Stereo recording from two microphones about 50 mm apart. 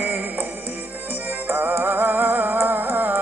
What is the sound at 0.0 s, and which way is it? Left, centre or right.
Music, right.